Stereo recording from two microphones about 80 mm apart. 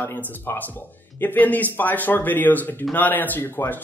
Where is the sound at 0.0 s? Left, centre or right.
Left.